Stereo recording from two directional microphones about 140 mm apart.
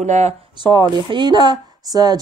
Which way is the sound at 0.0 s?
55° right (ahead or behind).